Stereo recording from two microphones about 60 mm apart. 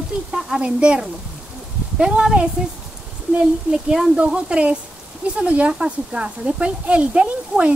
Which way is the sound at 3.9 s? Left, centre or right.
Centre.